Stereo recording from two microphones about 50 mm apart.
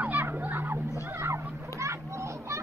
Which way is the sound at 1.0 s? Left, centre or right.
Right.